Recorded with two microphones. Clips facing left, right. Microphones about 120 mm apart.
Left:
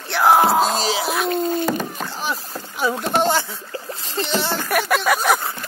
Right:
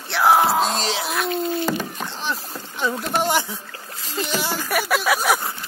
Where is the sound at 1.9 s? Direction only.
5° left (ahead or behind).